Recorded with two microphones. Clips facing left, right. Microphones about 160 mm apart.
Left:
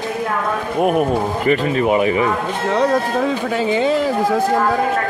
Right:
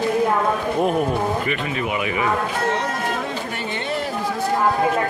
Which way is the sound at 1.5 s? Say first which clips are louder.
Left 9 dB; 40° left (ahead or behind).